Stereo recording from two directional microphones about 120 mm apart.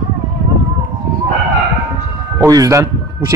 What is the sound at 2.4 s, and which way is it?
Speech, 30° right (ahead or behind).